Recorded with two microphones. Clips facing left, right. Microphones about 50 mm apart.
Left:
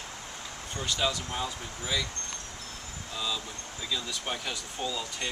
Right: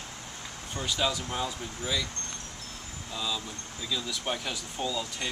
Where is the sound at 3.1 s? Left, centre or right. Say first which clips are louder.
Even; centre.